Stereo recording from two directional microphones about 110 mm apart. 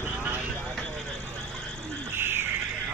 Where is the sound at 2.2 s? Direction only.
20° right (ahead or behind).